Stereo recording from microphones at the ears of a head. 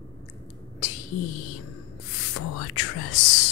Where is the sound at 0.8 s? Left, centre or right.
Left.